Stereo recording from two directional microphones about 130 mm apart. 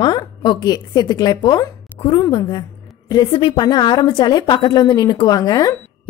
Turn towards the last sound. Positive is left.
turn(degrees=30)  # may be behind; listen again after turning